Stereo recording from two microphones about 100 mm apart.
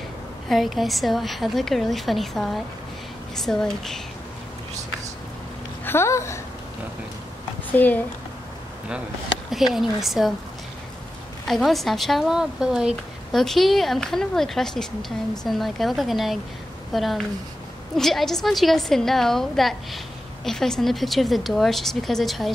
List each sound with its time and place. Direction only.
0.5 s a woman's voice: centre (ahead or behind)
5.9 s speech: 25° left (ahead or behind)
7.7 s speech: 15° left (ahead or behind)
9.5 s a woman's voice: centre (ahead or behind)
11.4 s a woman's voice: centre (ahead or behind)